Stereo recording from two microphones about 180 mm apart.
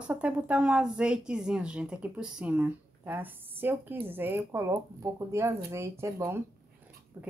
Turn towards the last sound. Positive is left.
turn(degrees=-15)  # may be behind; listen again after turning